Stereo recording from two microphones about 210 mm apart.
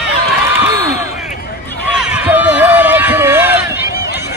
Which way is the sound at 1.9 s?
5° right (ahead or behind).